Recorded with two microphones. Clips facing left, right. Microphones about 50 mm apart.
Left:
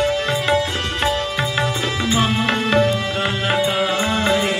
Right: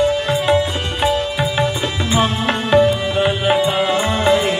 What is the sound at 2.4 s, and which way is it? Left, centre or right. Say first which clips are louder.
Music: right 6 dB; centre.